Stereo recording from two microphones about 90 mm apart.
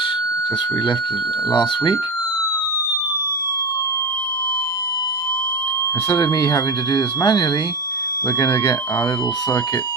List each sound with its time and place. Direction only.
1.5 s speech: 60° left (ahead or behind)
6.0 s speech: 50° left (ahead or behind)